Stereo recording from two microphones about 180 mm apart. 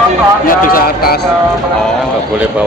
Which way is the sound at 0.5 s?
50° left (ahead or behind).